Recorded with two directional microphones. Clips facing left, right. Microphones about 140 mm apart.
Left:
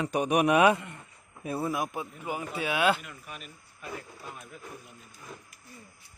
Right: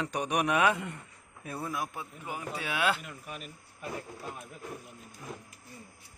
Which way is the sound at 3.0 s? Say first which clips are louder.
Right 2 dB; 40° right (ahead or behind).